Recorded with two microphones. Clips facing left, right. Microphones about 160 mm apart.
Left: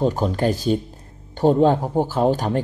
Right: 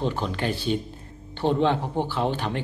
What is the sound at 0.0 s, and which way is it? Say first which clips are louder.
Speech: left 7 dB; 40° left (ahead or behind).